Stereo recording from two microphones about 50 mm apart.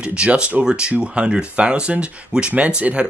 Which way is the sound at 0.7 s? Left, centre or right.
Centre.